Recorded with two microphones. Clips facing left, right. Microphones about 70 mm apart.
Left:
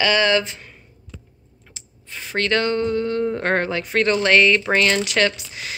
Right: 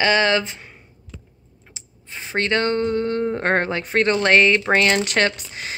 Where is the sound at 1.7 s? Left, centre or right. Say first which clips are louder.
Even; right.